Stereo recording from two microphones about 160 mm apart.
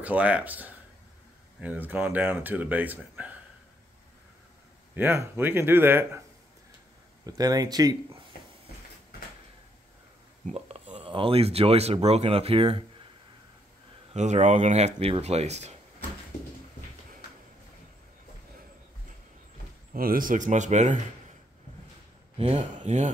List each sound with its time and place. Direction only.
0.0 s speech: 10° right (ahead or behind)
4.9 s speech: 15° right (ahead or behind)
7.2 s speech: 25° right (ahead or behind)
10.5 s speech: 40° right (ahead or behind)
14.1 s speech: 45° right (ahead or behind)
19.9 s speech: 65° right (ahead or behind)
22.4 s speech: 40° right (ahead or behind)